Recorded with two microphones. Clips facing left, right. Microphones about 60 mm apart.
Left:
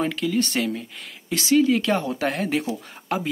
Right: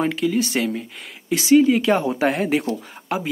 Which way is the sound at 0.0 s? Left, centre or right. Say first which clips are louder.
Right 3 dB; centre.